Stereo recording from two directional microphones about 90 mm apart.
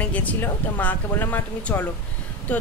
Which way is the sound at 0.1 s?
20° left (ahead or behind).